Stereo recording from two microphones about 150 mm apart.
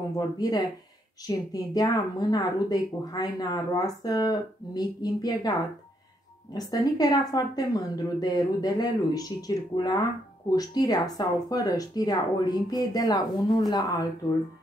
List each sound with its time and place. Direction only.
0.4 s a woman's voice: 25° left (ahead or behind)
6.5 s a woman's voice: 25° left (ahead or behind)